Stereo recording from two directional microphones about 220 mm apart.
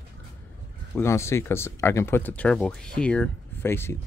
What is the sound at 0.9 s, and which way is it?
Speech, 10° left (ahead or behind).